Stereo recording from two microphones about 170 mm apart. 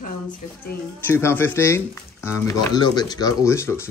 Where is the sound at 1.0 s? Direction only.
15° left (ahead or behind).